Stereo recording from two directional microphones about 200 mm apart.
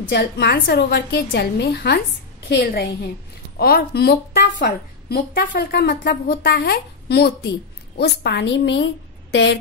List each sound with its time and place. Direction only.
0.0 s a woman's voice: 55° left (ahead or behind)
5.6 s a woman's voice: 55° left (ahead or behind)